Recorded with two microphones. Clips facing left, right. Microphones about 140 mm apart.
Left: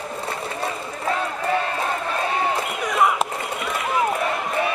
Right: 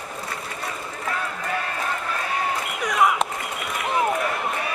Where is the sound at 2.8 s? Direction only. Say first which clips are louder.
Even; centre (ahead or behind).